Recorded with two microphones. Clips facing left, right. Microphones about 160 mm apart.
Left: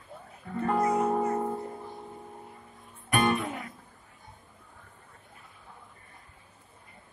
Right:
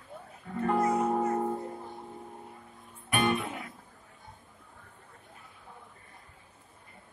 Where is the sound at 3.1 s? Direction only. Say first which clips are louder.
Left 2 dB; 40° left (ahead or behind).